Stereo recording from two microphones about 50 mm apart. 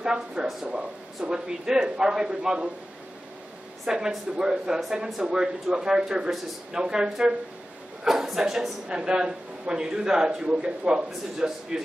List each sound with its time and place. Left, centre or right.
0.0 s speech: centre
3.8 s speech: centre
8.8 s speech: centre